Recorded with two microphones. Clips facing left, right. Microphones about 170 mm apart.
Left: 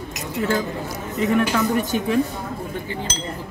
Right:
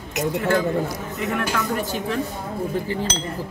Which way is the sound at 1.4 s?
15° left (ahead or behind).